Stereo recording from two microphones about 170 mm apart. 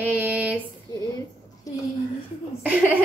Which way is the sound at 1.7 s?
20° left (ahead or behind).